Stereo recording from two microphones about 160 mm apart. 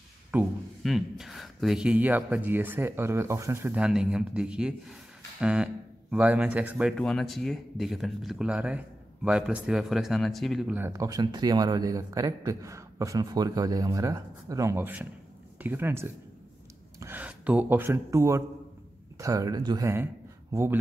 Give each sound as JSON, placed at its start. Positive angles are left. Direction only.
{"t": 0.3, "sound": "a sound", "side_deg": -10}
{"t": 0.8, "sound": "speech", "side_deg": 0}
{"t": 10.9, "sound": "a man's voice", "side_deg": -20}